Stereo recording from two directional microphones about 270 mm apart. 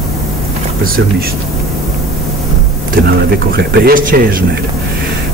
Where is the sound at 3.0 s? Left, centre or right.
Right.